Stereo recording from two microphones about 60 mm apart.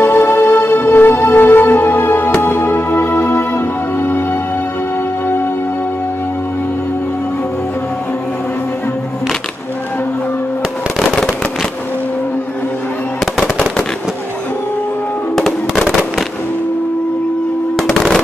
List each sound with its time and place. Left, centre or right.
0.0 s music: left
11.0 s fireworks: centre
17.7 s machine gun: centre